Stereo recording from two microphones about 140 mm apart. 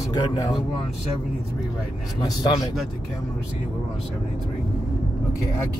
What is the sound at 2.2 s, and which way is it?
Speech, 25° left (ahead or behind).